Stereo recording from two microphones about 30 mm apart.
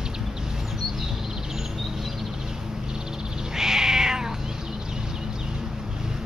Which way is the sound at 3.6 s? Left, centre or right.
Centre.